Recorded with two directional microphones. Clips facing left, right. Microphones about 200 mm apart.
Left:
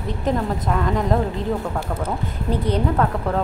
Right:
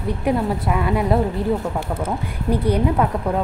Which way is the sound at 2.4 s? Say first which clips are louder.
Right 3 dB; 10° right (ahead or behind).